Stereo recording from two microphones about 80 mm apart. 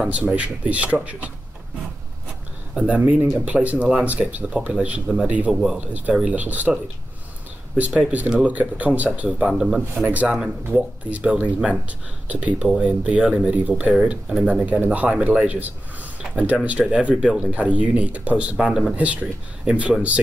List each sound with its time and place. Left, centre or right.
0.0 s speech: centre
2.7 s speech: centre
7.7 s speech: centre
9.5 s speech: centre
10.0 s speech: centre
12.5 s speech: centre
13.9 s speech: centre